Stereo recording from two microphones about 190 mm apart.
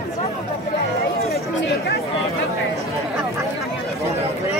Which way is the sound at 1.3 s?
55° left (ahead or behind).